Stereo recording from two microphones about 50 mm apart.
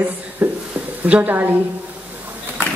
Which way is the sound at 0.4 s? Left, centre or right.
Right.